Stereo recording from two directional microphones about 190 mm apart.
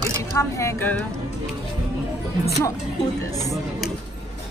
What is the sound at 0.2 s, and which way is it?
Speech, 15° left (ahead or behind).